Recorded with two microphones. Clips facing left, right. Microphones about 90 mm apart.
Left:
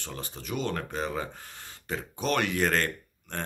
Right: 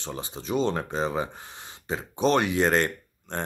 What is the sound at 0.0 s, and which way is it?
Speech, 20° right (ahead or behind).